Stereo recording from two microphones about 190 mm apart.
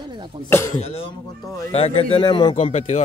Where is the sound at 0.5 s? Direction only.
10° left (ahead or behind).